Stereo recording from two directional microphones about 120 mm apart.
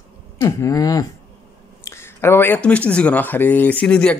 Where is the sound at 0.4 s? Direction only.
25° left (ahead or behind).